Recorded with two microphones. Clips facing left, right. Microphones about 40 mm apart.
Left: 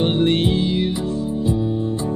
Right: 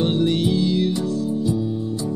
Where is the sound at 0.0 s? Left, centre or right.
Left.